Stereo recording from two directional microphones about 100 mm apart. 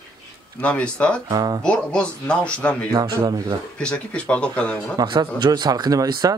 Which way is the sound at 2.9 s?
40° right (ahead or behind).